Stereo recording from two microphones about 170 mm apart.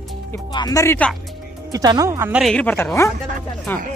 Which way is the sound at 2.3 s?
Centre (ahead or behind).